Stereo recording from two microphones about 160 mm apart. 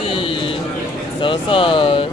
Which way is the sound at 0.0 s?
35° left (ahead or behind).